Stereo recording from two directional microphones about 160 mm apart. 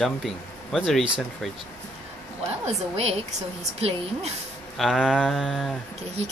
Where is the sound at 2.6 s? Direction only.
40° right (ahead or behind).